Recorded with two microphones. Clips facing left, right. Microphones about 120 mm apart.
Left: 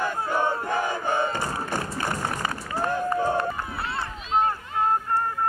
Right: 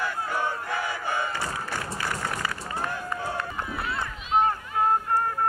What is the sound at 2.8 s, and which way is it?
Run, 40° left (ahead or behind).